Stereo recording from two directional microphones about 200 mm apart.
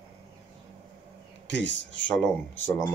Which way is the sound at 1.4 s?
65° left (ahead or behind).